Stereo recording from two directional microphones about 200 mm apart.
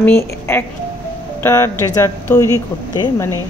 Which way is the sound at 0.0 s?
10° left (ahead or behind).